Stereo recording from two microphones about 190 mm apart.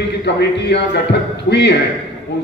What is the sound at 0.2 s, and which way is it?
A man's voice, 65° left (ahead or behind).